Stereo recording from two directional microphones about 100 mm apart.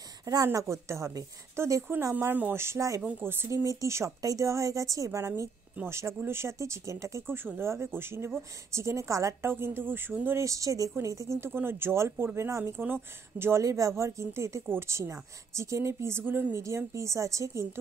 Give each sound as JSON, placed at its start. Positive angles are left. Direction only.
{"t": 0.2, "sound": "speech", "side_deg": -35}
{"t": 3.0, "sound": "speech", "side_deg": -15}
{"t": 3.4, "sound": "speech", "side_deg": -35}